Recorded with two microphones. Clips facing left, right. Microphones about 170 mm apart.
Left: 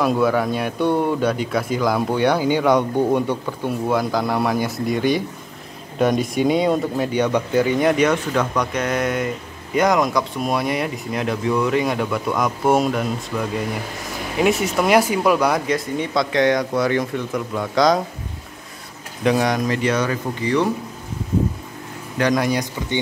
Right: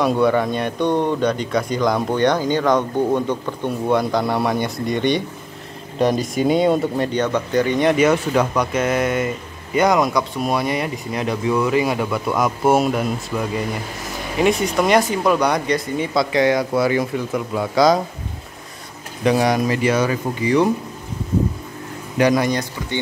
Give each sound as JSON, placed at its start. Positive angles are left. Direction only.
{"t": 0.0, "sound": "speech", "side_deg": 0}
{"t": 19.2, "sound": "speech", "side_deg": -5}
{"t": 22.2, "sound": "speech", "side_deg": -5}
{"t": 22.5, "sound": "speech", "side_deg": 15}